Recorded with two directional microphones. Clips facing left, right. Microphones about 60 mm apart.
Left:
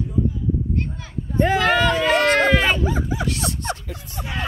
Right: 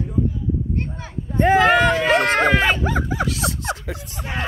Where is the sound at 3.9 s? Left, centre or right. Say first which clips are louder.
Right 5 dB; right.